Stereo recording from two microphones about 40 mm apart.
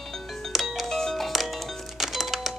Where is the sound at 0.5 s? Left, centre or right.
Centre.